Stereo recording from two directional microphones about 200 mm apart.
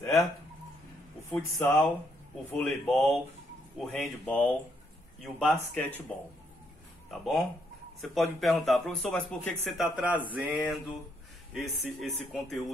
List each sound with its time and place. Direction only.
1.3 s speech: 10° left (ahead or behind)